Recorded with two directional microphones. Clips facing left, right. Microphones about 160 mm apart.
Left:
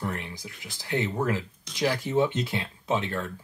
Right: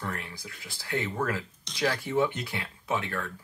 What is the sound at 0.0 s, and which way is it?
Speech, 20° left (ahead or behind).